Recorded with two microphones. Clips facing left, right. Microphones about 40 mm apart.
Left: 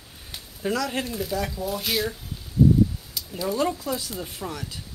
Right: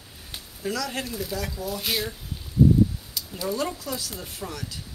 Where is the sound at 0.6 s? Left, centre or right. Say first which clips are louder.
Left 3 dB; centre.